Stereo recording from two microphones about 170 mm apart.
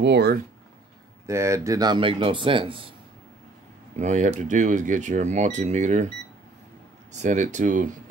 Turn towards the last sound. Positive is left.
turn(degrees=-50)  # may be behind; listen again after turning